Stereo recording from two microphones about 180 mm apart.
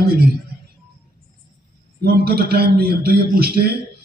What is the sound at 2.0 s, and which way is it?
A man's voice, 60° right (ahead or behind).